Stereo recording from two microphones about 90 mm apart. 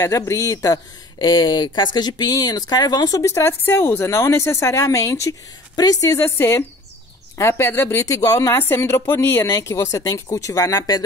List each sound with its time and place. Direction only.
0.0 s speech: 35° left (ahead or behind)
1.2 s speech: 50° left (ahead or behind)